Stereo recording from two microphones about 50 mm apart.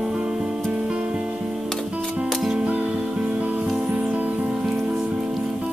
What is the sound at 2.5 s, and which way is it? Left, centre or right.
Music, right.